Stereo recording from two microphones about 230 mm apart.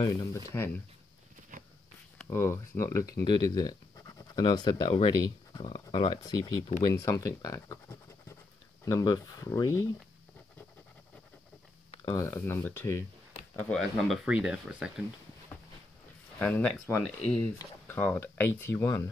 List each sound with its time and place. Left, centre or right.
0.0 s speech: centre
1.5 s a sound: right
2.1 s speech: centre
12.0 s speech: centre
16.3 s speech: centre